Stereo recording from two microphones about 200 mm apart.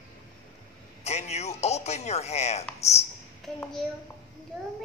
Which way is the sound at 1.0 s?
35° left (ahead or behind).